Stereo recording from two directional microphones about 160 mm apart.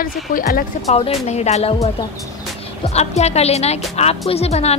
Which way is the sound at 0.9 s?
40° left (ahead or behind).